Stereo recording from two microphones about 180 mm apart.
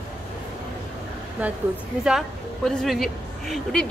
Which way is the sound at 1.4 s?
10° right (ahead or behind).